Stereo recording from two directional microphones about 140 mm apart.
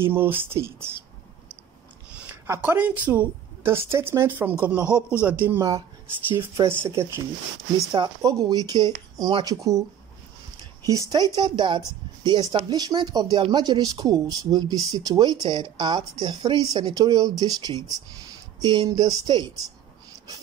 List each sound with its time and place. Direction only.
0.0 s speech: 15° right (ahead or behind)
2.1 s a woman's voice: 15° right (ahead or behind)
7.9 s speech: 25° right (ahead or behind)
10.9 s speech: 25° right (ahead or behind)